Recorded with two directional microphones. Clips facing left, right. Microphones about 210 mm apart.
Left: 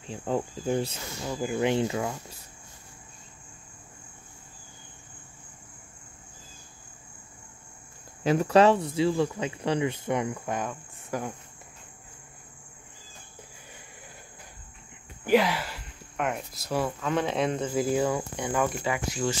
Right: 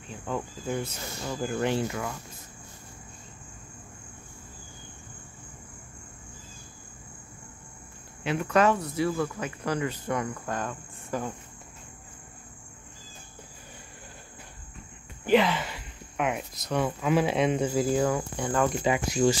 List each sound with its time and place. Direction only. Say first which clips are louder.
0.1 s cricket: left 4 dB; 30° left (ahead or behind)
1.2 s speech: left 2 dB; 10° left (ahead or behind); by 2.1 s 25° left (ahead or behind)
8.2 s cricket: left 4 dB; 40° left (ahead or behind)
8.9 s speech: left 3 dB; 25° left (ahead or behind)
15.2 s speech: even; 10° left (ahead or behind)
18.9 s speech: right 5 dB; 15° right (ahead or behind)